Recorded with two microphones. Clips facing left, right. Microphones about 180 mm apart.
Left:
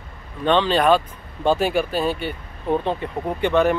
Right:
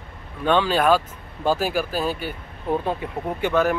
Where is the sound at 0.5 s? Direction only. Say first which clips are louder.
Left 2 dB; 5° right (ahead or behind).